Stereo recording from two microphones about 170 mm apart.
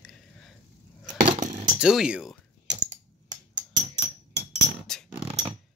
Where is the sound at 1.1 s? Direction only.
45° right (ahead or behind).